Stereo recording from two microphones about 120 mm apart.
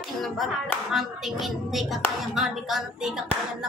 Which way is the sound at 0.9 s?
Centre (ahead or behind).